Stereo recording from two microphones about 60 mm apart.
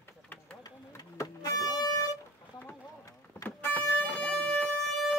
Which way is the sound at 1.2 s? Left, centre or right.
Left.